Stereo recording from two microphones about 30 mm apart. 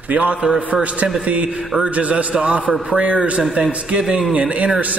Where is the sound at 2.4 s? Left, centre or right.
Right.